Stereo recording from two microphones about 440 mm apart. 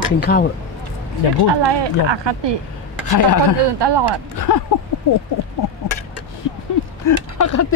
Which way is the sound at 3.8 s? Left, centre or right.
Right.